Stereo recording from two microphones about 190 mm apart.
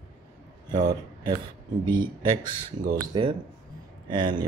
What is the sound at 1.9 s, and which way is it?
Speech, 25° right (ahead or behind).